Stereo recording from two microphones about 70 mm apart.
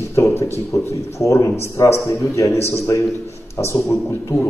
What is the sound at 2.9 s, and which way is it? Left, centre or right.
Speech, left.